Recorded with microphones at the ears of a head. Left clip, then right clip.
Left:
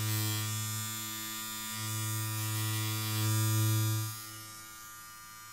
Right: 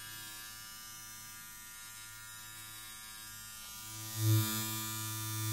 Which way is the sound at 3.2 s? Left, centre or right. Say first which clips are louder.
Left 14 dB; left.